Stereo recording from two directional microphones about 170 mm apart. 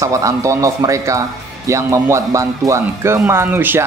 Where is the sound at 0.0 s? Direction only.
20° right (ahead or behind).